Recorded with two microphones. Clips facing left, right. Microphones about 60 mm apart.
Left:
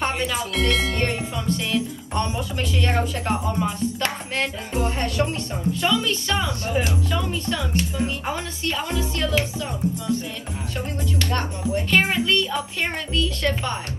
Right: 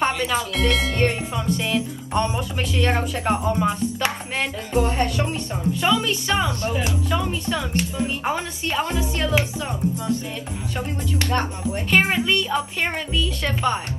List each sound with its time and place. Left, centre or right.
0.3 s speech: centre
1.0 s speech: centre
11.1 s speech: right; by 13.7 s centre